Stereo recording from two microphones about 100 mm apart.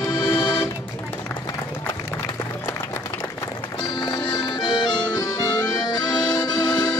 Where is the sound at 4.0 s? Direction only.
50° left (ahead or behind).